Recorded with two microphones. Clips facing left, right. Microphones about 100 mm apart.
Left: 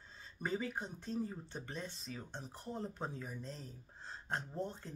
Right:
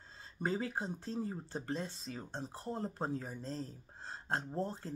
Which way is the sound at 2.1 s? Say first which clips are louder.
Right 2 dB; 50° right (ahead or behind).